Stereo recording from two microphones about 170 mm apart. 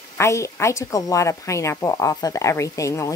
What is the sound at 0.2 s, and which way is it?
A woman's voice, 15° left (ahead or behind).